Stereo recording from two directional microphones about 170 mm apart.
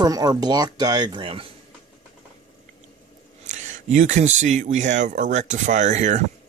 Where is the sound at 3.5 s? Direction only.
45° right (ahead or behind).